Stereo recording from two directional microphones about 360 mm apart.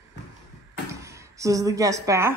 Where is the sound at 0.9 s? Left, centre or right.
Centre.